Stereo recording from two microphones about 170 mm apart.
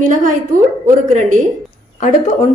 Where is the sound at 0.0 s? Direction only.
50° right (ahead or behind).